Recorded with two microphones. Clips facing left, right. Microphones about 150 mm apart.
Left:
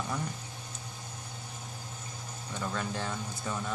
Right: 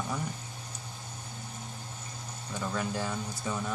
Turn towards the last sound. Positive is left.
turn(degrees=-5)  # may be behind; listen again after turning